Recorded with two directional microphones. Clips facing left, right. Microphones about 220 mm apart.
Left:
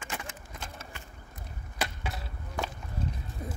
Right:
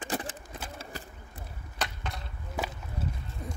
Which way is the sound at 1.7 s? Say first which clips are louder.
Left 1 dB; 10° left (ahead or behind).